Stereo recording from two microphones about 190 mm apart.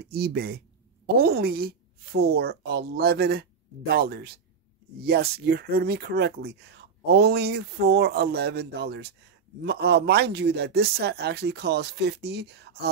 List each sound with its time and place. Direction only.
0.0 s speech: 60° right (ahead or behind)